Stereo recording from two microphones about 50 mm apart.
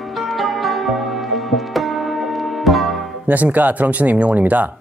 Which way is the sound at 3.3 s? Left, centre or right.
Right.